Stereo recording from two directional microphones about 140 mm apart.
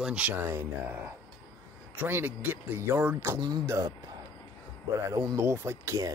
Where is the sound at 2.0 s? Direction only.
15° right (ahead or behind).